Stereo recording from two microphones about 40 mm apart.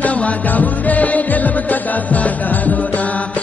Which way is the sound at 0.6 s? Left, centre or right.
Left.